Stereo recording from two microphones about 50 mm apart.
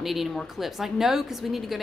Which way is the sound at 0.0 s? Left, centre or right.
Centre.